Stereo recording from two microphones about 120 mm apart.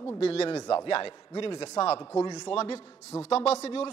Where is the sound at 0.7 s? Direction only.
50° left (ahead or behind).